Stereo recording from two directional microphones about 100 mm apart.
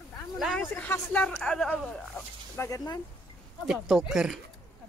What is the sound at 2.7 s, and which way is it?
Speech, 45° left (ahead or behind).